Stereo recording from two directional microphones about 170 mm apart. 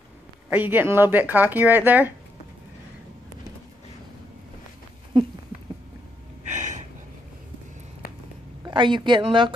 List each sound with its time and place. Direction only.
0.5 s speech: 10° right (ahead or behind)
6.5 s a sound: 45° right (ahead or behind)
8.6 s speech: 30° right (ahead or behind)